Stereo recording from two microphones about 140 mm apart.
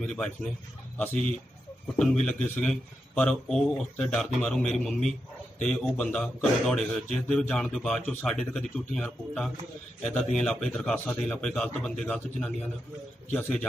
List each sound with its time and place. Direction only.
0.0 s a man's voice: 5° left (ahead or behind)